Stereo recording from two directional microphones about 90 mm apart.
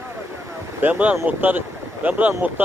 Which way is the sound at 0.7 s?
15° right (ahead or behind).